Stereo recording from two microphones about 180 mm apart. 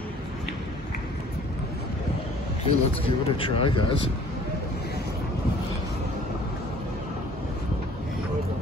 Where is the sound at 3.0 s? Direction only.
30° left (ahead or behind).